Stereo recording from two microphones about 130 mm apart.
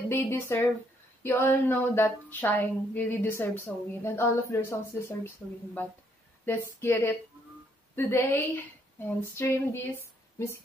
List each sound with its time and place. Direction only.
0.1 s a woman's voice: 20° left (ahead or behind)
6.4 s a woman's voice: 15° left (ahead or behind)